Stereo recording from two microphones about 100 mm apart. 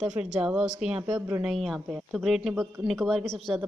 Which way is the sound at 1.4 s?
Centre (ahead or behind).